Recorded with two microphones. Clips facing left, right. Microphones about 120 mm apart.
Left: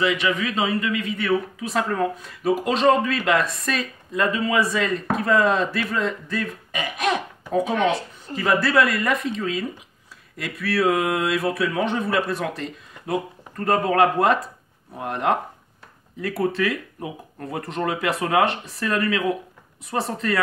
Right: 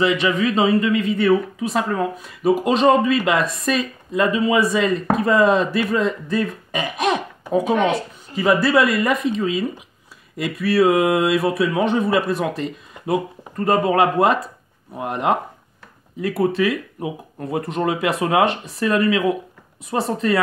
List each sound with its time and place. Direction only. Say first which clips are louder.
0.0 s speech: right 4 dB; 25° right (ahead or behind)
1.7 s speech: right 1 dB; 10° right (ahead or behind)